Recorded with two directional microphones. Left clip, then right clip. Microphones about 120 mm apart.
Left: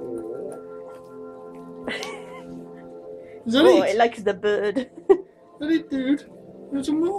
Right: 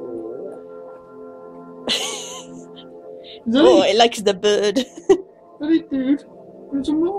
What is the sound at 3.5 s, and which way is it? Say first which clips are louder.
A woman's voice: right 3 dB; 20° right (ahead or behind).